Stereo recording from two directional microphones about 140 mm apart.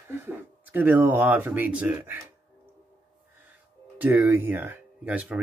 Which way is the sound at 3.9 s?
10° right (ahead or behind).